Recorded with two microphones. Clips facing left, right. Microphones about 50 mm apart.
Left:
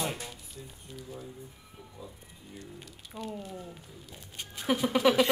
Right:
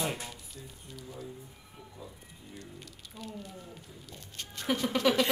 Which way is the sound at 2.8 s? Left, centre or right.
Centre.